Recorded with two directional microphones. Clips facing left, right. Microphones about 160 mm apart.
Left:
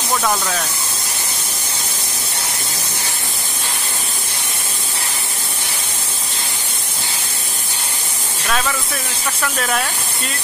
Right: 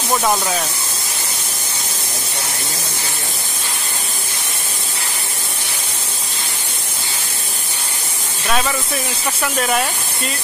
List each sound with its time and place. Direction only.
0.1 s speech: 20° right (ahead or behind)
8.5 s speech: 5° right (ahead or behind)